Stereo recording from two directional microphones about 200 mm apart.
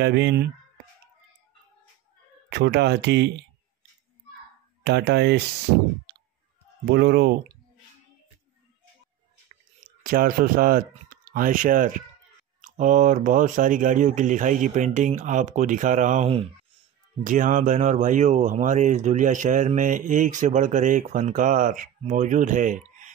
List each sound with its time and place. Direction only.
0.0 s speech: 55° right (ahead or behind)
2.5 s speech: 55° right (ahead or behind)
4.8 s speech: 55° right (ahead or behind)
6.9 s speech: 55° right (ahead or behind)
10.0 s speech: 45° right (ahead or behind)